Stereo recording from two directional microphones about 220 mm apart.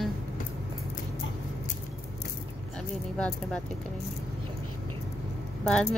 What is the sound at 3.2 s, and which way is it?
Speech, 5° left (ahead or behind).